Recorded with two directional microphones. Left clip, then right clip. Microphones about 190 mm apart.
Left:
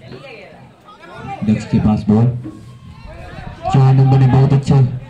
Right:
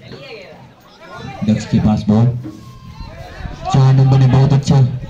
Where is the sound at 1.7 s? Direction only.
45° right (ahead or behind).